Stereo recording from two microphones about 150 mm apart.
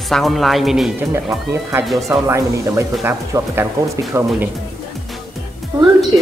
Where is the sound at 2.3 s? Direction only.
20° right (ahead or behind).